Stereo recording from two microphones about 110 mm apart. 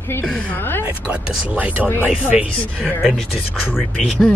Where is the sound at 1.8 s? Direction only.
15° left (ahead or behind).